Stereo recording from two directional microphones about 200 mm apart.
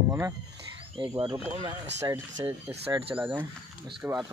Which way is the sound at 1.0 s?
25° right (ahead or behind).